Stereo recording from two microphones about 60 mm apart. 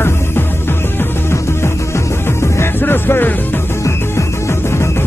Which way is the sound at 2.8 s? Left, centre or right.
Left.